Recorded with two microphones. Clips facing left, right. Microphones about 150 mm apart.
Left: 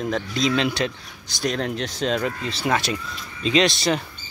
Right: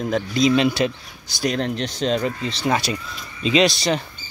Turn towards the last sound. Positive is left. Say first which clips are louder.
# right 2 dB
turn(degrees=0)  # may be behind; listen again after turning